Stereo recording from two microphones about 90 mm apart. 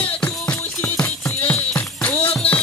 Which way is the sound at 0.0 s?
15° left (ahead or behind).